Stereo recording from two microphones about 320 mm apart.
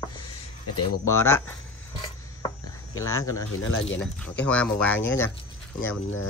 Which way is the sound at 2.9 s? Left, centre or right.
Centre.